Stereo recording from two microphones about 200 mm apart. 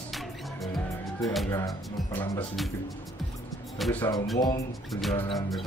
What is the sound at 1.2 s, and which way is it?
Speech, centre (ahead or behind).